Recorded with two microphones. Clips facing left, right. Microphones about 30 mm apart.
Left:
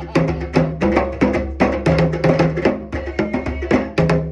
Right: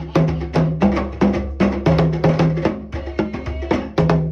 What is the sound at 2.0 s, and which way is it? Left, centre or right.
Music, left.